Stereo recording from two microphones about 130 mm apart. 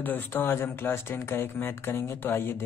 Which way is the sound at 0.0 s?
15° left (ahead or behind).